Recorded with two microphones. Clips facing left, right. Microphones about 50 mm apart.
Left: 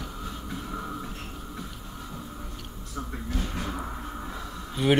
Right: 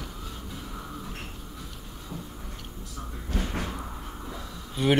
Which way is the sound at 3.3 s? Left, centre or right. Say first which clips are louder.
Right 2 dB; right.